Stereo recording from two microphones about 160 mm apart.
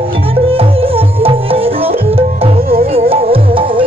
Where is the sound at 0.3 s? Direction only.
35° right (ahead or behind).